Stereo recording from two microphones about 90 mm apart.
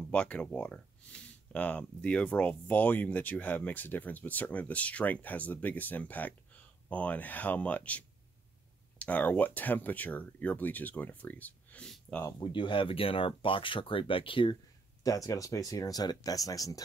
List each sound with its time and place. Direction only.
0.1 s speech: 10° left (ahead or behind)
12.4 s speech: 65° left (ahead or behind)
15.0 s speech: 40° left (ahead or behind)